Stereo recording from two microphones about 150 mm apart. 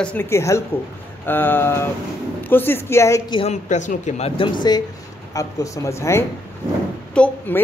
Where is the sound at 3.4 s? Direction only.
50° left (ahead or behind).